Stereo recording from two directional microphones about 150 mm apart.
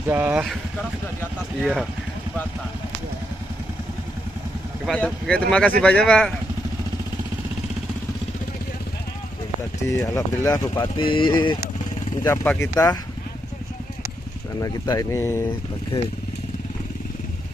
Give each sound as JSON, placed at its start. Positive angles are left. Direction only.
{"t": 0.1, "sound": "speech", "side_deg": -10}
{"t": 1.6, "sound": "speech", "side_deg": 0}
{"t": 4.8, "sound": "speech", "side_deg": 5}
{"t": 9.8, "sound": "speech", "side_deg": 20}
{"t": 12.3, "sound": "speech", "side_deg": 15}
{"t": 14.6, "sound": "speech", "side_deg": 25}